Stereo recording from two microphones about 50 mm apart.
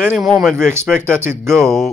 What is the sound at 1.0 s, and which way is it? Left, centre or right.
Speech, right.